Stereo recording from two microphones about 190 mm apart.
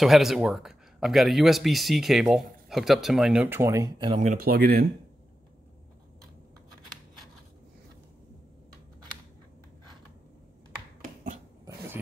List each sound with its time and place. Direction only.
0.0 s speech: centre (ahead or behind); by 4.2 s 20° right (ahead or behind)
4.2 s speech: 45° right (ahead or behind)